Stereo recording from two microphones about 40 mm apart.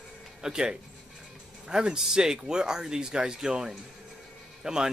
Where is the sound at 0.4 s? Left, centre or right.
Centre.